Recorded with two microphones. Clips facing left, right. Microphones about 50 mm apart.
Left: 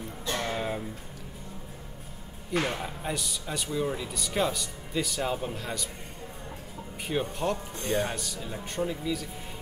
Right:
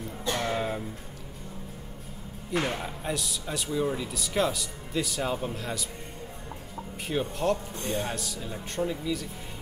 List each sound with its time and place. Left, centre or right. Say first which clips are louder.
0.3 s music: right 2 dB; centre
2.6 s speech: even; centre
7.1 s speech: right 2 dB; centre
7.7 s speech: left 2 dB; left
8.0 s speech: left 1 dB; centre